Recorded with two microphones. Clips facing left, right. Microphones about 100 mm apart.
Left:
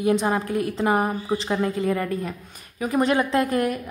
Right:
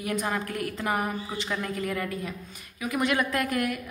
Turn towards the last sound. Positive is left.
turn(degrees=30)  # may be behind; listen again after turning